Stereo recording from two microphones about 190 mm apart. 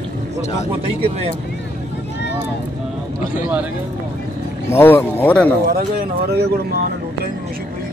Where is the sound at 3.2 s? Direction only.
45° left (ahead or behind).